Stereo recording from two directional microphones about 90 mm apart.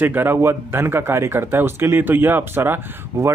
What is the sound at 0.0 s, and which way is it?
A man's voice, 20° right (ahead or behind).